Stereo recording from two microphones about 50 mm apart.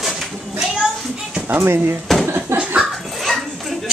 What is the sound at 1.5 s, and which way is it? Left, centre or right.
Speech, right.